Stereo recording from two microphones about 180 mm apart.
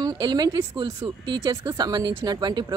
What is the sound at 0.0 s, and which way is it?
A woman's voice, 25° right (ahead or behind).